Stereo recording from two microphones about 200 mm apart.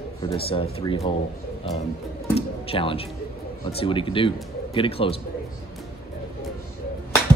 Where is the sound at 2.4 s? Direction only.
30° left (ahead or behind).